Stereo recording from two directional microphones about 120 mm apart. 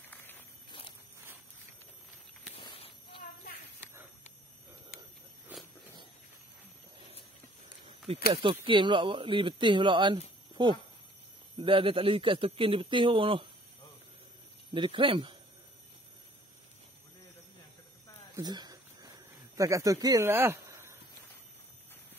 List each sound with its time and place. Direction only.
0.7 s walk: 40° left (ahead or behind)
2.6 s walk: 45° left (ahead or behind)
5.5 s a sound: 10° right (ahead or behind)
8.1 s speech: 55° right (ahead or behind)
8.6 s a man's voice: 40° right (ahead or behind)
10.5 s a sound: 40° right (ahead or behind)
11.5 s a man's voice: 45° right (ahead or behind)
14.7 s a man's voice: 45° right (ahead or behind)
18.3 s a sound: 35° right (ahead or behind)